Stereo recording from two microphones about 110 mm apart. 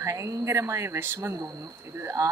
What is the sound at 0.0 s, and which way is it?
Speech, 30° right (ahead or behind).